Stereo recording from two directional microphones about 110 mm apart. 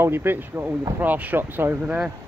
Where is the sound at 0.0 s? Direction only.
20° right (ahead or behind).